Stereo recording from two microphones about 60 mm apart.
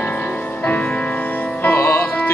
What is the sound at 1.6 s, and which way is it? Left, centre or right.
Music, left.